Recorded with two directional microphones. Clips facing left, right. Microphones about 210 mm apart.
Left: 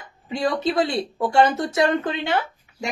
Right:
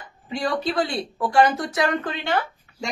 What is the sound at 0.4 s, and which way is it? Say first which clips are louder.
Speech: left 2 dB; 25° left (ahead or behind).